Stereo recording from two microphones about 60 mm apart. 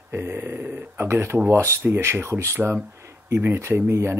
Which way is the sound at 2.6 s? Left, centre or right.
Centre.